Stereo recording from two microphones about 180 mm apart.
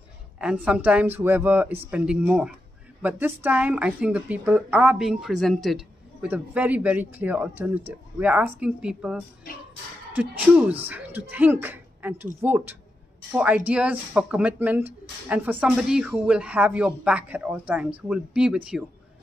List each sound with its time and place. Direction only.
0.4 s a woman's voice: 5° right (ahead or behind)
10.8 s speech: 10° right (ahead or behind)